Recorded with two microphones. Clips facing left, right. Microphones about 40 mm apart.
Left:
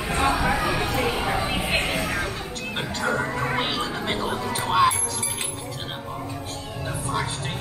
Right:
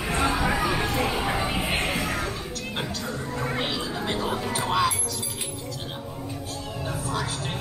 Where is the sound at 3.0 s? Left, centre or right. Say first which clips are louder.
Left 8 dB; left.